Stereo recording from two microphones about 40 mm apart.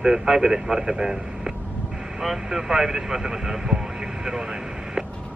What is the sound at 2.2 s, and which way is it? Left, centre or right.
Vehicle, centre.